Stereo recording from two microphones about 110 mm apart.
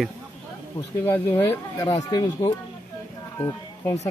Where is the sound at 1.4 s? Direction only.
20° left (ahead or behind).